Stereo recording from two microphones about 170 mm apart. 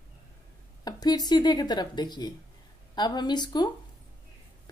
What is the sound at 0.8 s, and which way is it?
A woman's voice, 25° left (ahead or behind).